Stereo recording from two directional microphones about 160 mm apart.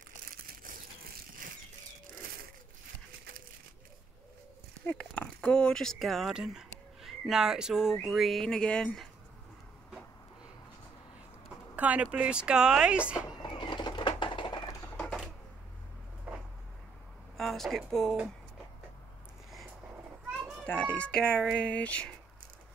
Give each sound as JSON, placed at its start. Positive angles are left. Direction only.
{"t": 0.4, "sound": "crumpling", "side_deg": -65}
{"t": 1.4, "sound": "a sound", "side_deg": -55}
{"t": 4.8, "sound": "speech", "side_deg": 10}
{"t": 11.7, "sound": "speech", "side_deg": -10}
{"t": 13.4, "sound": "a sound", "side_deg": 30}
{"t": 15.0, "sound": "typewriter", "side_deg": 0}
{"t": 16.3, "sound": "a sound", "side_deg": -10}
{"t": 17.4, "sound": "speech", "side_deg": 0}
{"t": 20.6, "sound": "speech", "side_deg": 10}